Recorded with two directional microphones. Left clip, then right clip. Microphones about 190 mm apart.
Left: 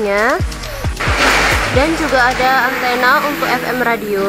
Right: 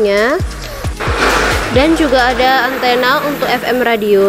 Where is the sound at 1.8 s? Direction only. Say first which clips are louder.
Right 4 dB; 10° right (ahead or behind).